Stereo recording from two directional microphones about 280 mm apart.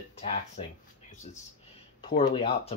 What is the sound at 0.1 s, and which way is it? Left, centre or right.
Speech, left.